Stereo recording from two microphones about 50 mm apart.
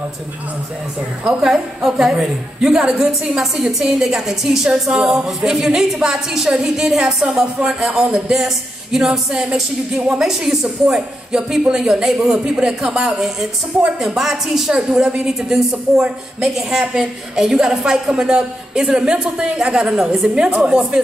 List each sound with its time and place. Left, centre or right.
1.2 s a woman's voice: centre
9.3 s speech: centre
10.2 s a woman's voice: centre